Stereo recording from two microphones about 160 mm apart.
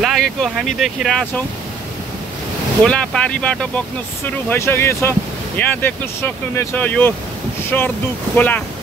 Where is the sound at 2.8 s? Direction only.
5° left (ahead or behind).